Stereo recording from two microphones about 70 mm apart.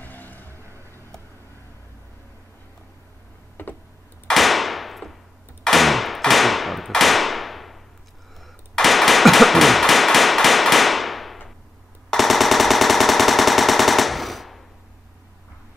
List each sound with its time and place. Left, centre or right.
0.0 s vehicle: left
3.6 s computer keyboard: left
4.3 s a sound: centre
8.4 s hammer: centre
12.1 s machine gun: centre